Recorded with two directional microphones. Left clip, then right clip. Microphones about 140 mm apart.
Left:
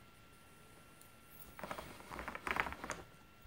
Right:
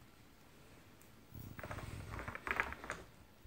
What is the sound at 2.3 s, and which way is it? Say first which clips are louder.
Typing: even; 90° left.